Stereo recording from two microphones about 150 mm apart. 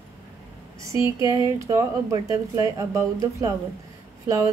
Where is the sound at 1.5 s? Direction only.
20° right (ahead or behind).